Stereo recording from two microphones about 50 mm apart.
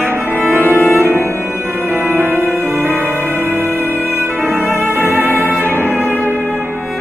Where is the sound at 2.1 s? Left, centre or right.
Right.